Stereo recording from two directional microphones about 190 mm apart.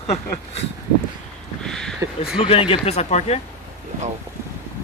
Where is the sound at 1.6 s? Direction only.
5° left (ahead or behind).